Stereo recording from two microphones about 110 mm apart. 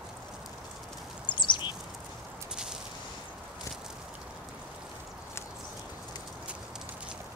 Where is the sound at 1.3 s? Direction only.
45° left (ahead or behind).